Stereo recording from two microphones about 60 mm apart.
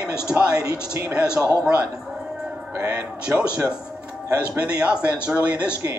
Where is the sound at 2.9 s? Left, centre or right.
Right.